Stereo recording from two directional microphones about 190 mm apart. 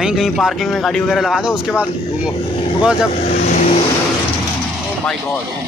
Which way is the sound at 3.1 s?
35° left (ahead or behind).